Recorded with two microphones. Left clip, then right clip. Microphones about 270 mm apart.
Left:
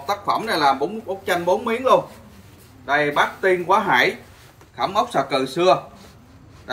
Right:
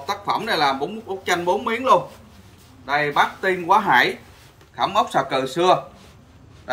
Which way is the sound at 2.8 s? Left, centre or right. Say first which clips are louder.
Left 1 dB; centre.